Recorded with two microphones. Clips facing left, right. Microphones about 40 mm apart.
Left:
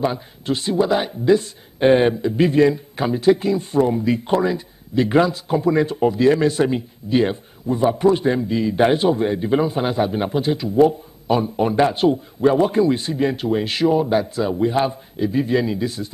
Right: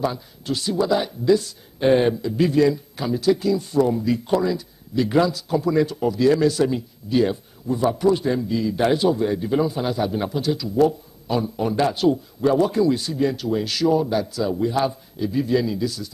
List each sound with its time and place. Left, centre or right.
0.0 s speech: left